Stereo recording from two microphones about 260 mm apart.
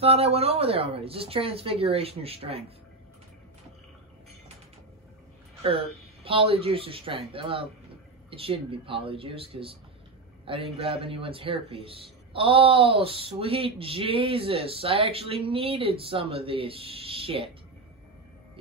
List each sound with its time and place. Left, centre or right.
0.0 s speech: right
5.6 s speech: right